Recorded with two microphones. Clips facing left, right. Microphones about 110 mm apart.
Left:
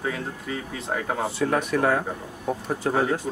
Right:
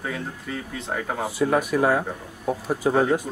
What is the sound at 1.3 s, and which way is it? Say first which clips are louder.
Speech: right 4 dB; 10° right (ahead or behind).